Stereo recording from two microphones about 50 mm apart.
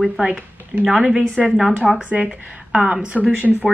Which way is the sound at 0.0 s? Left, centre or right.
Right.